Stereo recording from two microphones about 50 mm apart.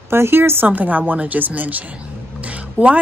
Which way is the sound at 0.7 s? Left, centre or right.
Right.